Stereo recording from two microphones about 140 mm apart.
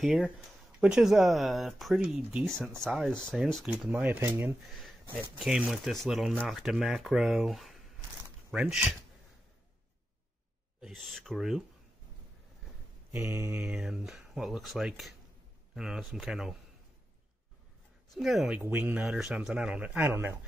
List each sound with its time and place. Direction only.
0.0 s speech: centre (ahead or behind)
2.5 s speech: 5° left (ahead or behind)
3.6 s speech: 5° right (ahead or behind)
5.4 s speech: 5° right (ahead or behind)
10.8 s speech: centre (ahead or behind)
13.1 s speech: 20° right (ahead or behind); by 16.5 s 5° right (ahead or behind)
18.1 s speech: centre (ahead or behind)
18.6 s speech: 15° right (ahead or behind)
19.0 s speech: 5° right (ahead or behind)